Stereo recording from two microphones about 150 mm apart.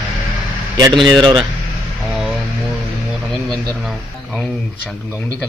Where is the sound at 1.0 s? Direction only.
30° right (ahead or behind).